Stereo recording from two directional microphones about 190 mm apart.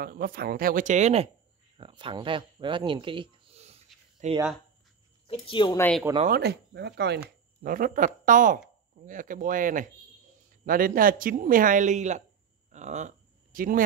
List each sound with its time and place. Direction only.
0.0 s speech: 50° right (ahead or behind); by 4.4 s 35° right (ahead or behind)
5.3 s speech: 25° left (ahead or behind)
5.8 s speech: 5° left (ahead or behind)
6.2 s speech: 55° right (ahead or behind)
7.2 s speech: 45° right (ahead or behind)
12.7 s a sound: 40° right (ahead or behind)